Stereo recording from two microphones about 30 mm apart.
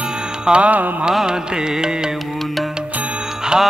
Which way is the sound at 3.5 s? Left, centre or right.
Right.